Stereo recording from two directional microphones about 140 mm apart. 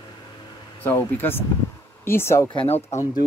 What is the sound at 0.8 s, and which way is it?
Speech, 15° left (ahead or behind).